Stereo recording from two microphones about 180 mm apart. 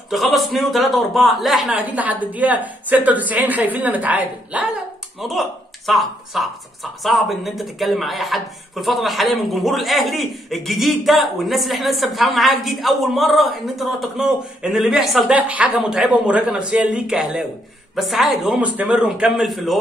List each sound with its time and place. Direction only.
0.1 s a woman's voice: centre (ahead or behind)